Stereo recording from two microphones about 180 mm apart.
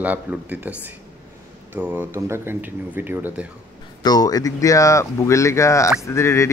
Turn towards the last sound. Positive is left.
turn(degrees=15)  # may be behind; listen again after turning